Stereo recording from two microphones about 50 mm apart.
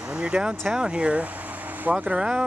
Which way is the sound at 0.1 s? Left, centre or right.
Right.